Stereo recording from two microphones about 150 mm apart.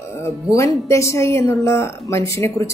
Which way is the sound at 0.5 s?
20° left (ahead or behind).